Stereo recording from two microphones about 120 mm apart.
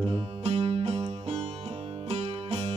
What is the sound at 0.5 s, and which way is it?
Music, 55° right (ahead or behind).